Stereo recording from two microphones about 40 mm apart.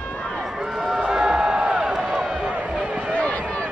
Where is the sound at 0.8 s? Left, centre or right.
Centre.